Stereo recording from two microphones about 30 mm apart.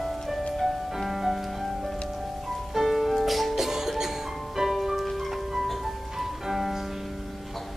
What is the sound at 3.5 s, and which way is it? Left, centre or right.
Music, centre.